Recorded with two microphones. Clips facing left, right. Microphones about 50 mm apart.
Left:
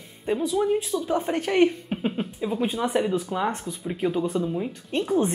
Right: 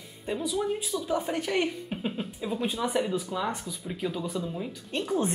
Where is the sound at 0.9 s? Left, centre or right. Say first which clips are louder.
Left 4 dB; left.